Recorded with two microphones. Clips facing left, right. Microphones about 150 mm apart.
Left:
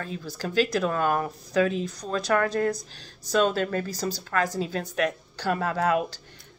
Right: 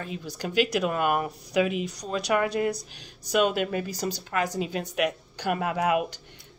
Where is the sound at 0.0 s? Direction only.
15° right (ahead or behind).